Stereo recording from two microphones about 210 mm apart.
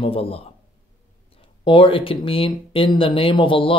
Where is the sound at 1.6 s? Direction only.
25° left (ahead or behind).